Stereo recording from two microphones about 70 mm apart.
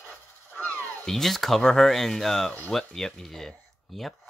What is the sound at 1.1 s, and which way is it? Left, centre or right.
Speech, centre.